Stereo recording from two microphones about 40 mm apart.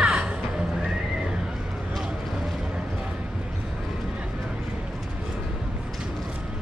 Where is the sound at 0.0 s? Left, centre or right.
Right.